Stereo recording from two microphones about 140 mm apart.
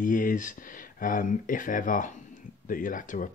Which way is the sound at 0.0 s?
70° left (ahead or behind).